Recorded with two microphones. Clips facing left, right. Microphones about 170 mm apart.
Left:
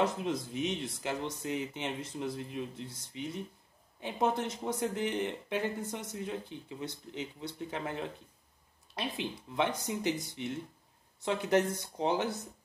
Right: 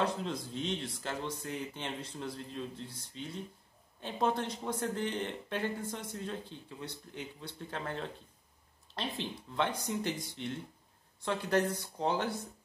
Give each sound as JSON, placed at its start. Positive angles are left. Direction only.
{"t": 0.2, "sound": "speech", "side_deg": 15}